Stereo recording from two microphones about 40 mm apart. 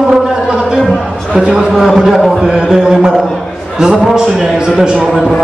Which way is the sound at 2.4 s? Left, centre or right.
Centre.